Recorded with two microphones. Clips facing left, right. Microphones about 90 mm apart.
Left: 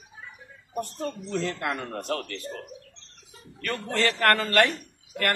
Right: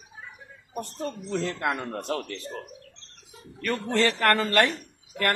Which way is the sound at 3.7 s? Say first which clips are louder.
Right 2 dB; 20° right (ahead or behind).